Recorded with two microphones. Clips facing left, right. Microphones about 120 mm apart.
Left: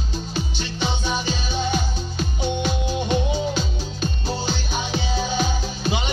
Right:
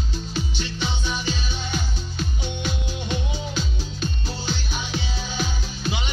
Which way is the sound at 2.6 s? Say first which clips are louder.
Left 6 dB; 45° left (ahead or behind).